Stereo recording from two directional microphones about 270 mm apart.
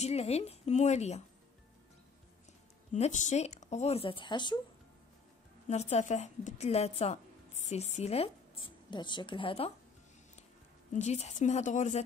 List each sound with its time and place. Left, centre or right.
0.0 s speech: left
2.9 s speech: left
5.7 s a woman's voice: left
10.9 s speech: left